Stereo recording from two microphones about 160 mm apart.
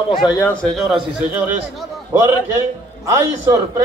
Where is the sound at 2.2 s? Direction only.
15° right (ahead or behind).